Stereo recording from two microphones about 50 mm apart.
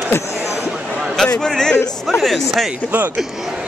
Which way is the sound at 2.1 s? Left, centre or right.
Centre.